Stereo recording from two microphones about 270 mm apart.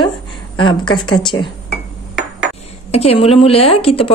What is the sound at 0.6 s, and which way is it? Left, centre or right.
Speech, centre.